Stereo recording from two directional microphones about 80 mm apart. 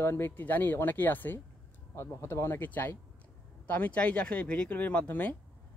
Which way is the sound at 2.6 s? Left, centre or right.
Left.